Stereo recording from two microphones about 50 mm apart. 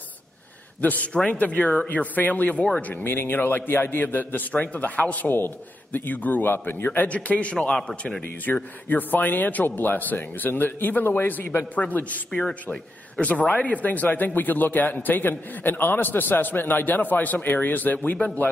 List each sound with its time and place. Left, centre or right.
0.7 s a man's voice: left
3.0 s a man's voice: left
6.5 s a man's voice: left
7.2 s a man's voice: left
8.8 s a man's voice: left
12.3 s a man's voice: centre
13.2 s a man's voice: left